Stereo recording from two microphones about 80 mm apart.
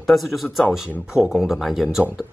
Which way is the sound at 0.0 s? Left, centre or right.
Centre.